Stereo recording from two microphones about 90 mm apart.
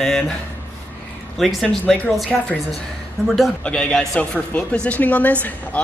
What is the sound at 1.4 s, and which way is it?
A man's voice, 5° left (ahead or behind).